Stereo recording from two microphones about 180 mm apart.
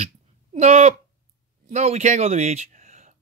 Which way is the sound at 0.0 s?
40° right (ahead or behind).